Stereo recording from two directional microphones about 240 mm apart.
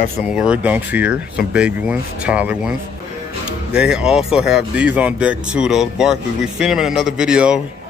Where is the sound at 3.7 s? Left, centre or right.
Centre.